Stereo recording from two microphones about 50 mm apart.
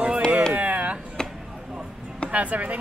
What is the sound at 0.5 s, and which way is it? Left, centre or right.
Chop, right.